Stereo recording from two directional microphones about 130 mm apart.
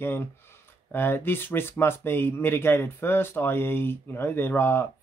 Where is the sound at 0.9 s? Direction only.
15° left (ahead or behind).